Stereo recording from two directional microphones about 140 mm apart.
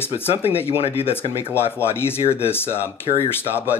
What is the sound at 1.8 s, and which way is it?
Speech, 15° left (ahead or behind).